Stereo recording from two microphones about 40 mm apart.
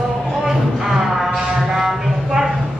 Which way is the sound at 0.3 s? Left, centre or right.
Centre.